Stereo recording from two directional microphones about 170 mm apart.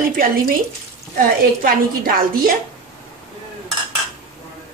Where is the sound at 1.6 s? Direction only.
55° right (ahead or behind).